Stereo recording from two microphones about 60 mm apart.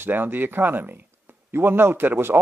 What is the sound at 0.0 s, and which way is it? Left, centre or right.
Speech, right.